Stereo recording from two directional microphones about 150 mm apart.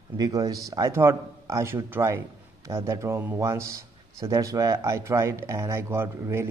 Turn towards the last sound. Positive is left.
turn(degrees=-15)  # may be behind; listen again after turning